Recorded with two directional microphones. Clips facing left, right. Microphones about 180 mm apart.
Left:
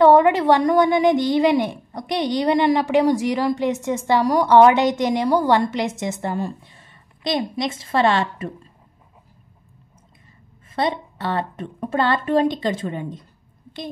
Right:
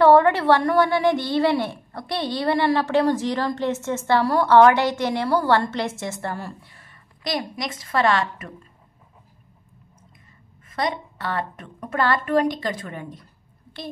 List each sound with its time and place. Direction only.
0.0 s a woman's voice: 15° left (ahead or behind)
10.7 s a woman's voice: 25° left (ahead or behind)